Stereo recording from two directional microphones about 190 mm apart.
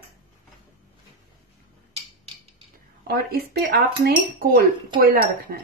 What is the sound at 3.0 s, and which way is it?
Speech, 55° right (ahead or behind).